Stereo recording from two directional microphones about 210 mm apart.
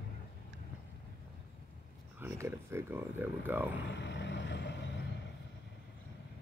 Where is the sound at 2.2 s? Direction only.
10° right (ahead or behind).